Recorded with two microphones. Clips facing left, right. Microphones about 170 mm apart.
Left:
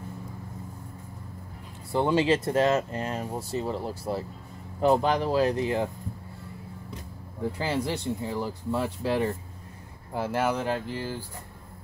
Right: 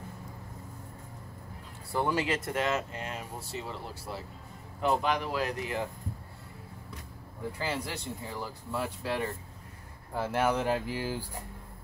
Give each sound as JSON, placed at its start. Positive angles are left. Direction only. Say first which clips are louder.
{"t": 1.9, "sound": "speech", "louder": "left 6 dB", "side_deg": 25}
{"t": 7.5, "sound": "speech", "louder": "left 6 dB", "side_deg": 25}
{"t": 10.1, "sound": "speech", "louder": "left 1 dB", "side_deg": 5}